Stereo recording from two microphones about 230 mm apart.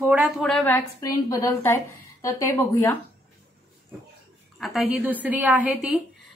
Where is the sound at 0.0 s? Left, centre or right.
Centre.